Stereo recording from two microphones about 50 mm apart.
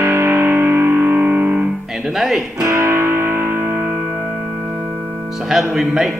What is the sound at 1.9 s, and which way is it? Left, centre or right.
Speech, centre.